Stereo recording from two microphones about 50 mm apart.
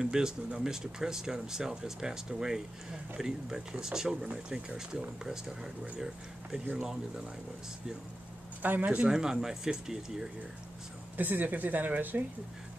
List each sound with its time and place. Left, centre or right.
0.0 s speech: centre
8.6 s speech: right
9.1 s speech: centre
11.1 s speech: right